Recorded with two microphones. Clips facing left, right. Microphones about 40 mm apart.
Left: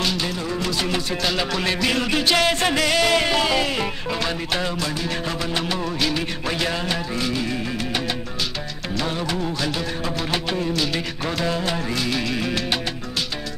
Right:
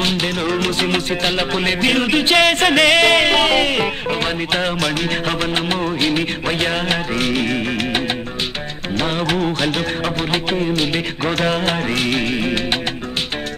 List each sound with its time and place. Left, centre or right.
0.0 s music: right
1.3 s music: right
2.4 s music: right
4.7 s music: right
5.8 s music: right
7.2 s music: right
10.3 s music: right
11.3 s music: right